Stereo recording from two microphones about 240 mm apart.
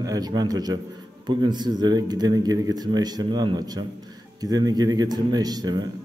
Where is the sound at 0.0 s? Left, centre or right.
Centre.